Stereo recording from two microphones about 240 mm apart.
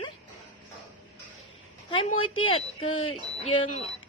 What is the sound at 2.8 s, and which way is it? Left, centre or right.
Speech, left.